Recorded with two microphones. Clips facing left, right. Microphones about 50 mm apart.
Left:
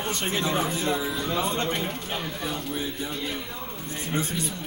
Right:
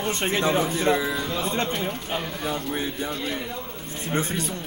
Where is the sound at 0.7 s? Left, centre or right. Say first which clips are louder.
Right 4 dB; right.